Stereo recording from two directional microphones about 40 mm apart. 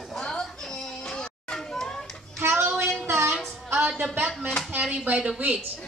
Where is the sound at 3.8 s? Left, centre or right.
Centre.